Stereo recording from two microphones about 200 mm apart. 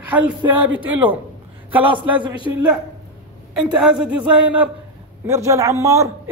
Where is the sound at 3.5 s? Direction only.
5° right (ahead or behind).